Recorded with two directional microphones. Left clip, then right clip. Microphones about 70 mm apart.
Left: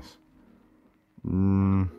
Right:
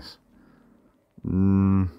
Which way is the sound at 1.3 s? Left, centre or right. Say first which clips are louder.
Right 3 dB; left.